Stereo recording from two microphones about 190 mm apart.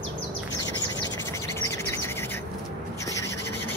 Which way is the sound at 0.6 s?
20° left (ahead or behind).